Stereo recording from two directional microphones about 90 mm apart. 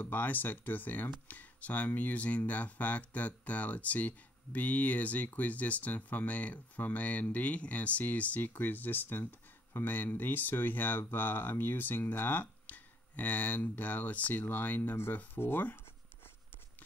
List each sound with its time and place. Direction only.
0.0 s speech: 20° left (ahead or behind)